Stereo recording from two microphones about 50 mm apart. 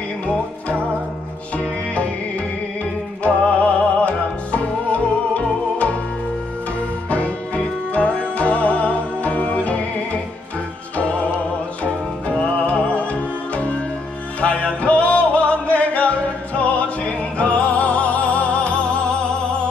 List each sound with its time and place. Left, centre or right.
3.6 s music: left
7.1 s music: left
12.6 s music: left